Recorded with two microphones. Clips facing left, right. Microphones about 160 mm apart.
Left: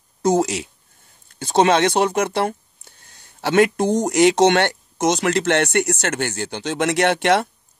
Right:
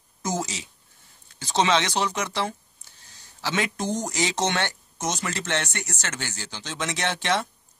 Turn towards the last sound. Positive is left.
turn(degrees=65)  # may be behind; listen again after turning